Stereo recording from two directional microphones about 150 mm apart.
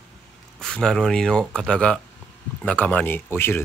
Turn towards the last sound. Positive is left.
turn(degrees=15)  # may be behind; listen again after turning